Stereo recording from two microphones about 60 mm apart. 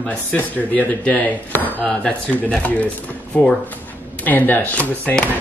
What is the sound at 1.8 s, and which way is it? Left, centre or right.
Speech, centre.